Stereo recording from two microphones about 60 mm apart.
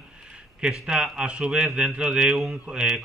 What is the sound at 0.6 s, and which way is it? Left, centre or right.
A man's voice, centre.